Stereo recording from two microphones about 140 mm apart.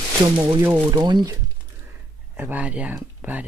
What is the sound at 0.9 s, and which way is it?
Speech, 30° right (ahead or behind).